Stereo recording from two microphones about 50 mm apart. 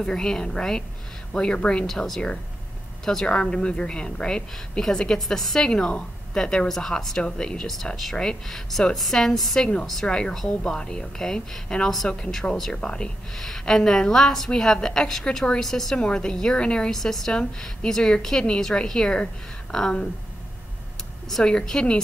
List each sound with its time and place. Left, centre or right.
0.0 s a woman's voice: centre
3.1 s a woman's voice: centre
10.3 s a woman's voice: centre
21.5 s a woman's voice: centre